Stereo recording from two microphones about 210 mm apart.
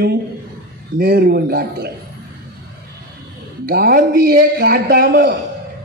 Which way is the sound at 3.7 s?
45° right (ahead or behind).